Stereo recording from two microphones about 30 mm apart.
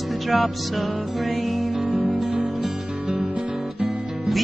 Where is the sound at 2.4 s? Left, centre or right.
Right.